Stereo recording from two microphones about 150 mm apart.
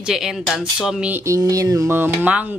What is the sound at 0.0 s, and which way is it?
Speech, 5° right (ahead or behind).